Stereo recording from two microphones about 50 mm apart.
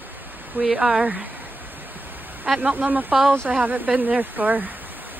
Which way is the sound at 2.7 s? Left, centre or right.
Right.